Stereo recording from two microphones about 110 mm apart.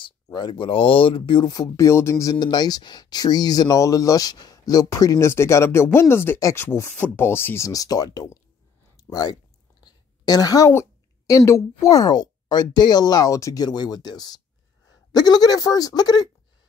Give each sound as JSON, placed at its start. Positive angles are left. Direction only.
{"t": 0.0, "sound": "speech", "side_deg": 40}
{"t": 2.3, "sound": "speech", "side_deg": 40}
{"t": 8.9, "sound": "a sound", "side_deg": 35}
{"t": 10.7, "sound": "speech", "side_deg": 25}